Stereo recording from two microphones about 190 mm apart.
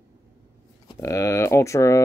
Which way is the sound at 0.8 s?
20° left (ahead or behind).